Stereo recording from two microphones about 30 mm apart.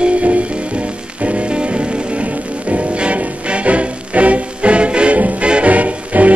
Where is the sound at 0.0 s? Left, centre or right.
Right.